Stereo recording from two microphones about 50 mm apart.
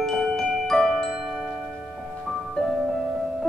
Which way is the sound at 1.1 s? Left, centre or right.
Centre.